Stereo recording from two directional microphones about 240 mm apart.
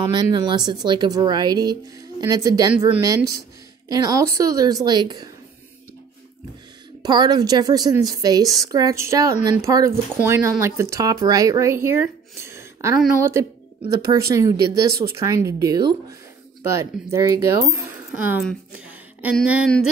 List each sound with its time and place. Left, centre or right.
0.1 s a woman's voice: centre
7.0 s a woman's voice: centre
17.0 s speech: centre
18.3 s speech: centre